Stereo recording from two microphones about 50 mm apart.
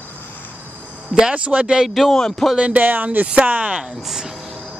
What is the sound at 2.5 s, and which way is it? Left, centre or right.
Speech, right.